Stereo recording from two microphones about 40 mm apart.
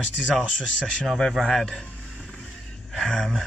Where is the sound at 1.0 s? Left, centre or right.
Centre.